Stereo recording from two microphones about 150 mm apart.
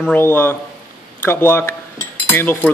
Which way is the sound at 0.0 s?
10° left (ahead or behind).